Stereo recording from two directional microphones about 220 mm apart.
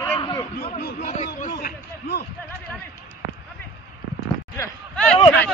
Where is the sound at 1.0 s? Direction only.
30° left (ahead or behind).